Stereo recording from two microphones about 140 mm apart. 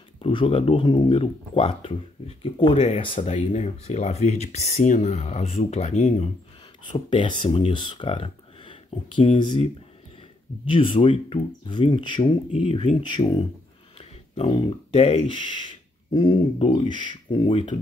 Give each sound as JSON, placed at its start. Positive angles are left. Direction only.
{"t": 0.2, "sound": "speech", "side_deg": 40}
{"t": 3.3, "sound": "speech", "side_deg": 55}
{"t": 6.8, "sound": "speech", "side_deg": 35}
{"t": 10.7, "sound": "speech", "side_deg": 40}
{"t": 13.9, "sound": "speech", "side_deg": 45}